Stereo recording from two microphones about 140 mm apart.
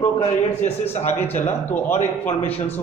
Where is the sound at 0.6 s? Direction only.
55° left (ahead or behind).